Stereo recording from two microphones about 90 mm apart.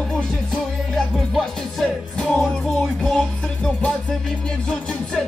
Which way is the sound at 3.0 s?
5° left (ahead or behind).